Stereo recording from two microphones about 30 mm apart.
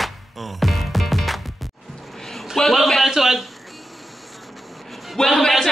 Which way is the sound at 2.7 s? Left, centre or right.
Centre.